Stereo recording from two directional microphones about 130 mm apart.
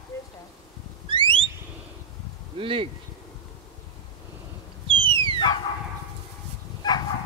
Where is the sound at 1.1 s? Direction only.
40° right (ahead or behind).